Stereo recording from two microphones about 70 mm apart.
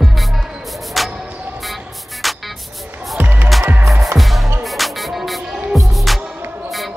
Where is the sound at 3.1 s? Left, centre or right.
Right.